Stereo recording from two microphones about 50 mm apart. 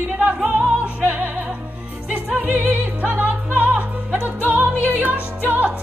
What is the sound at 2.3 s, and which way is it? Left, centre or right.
Music, right.